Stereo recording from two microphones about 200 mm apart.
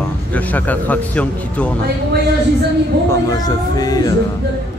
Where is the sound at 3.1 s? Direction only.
20° left (ahead or behind).